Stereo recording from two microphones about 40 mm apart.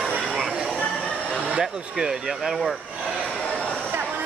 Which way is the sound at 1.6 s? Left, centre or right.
Centre.